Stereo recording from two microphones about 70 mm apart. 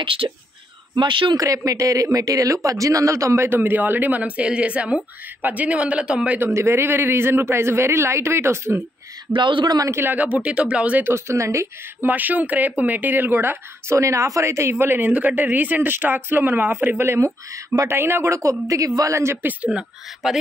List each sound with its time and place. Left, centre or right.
0.2 s speech: right
3.4 s speech: right
6.4 s speech: right
9.8 s speech: right
10.1 s speech: centre
11.1 s speech: right
12.1 s speech: right
18.4 s speech: right
19.4 s speech: centre
20.2 s speech: centre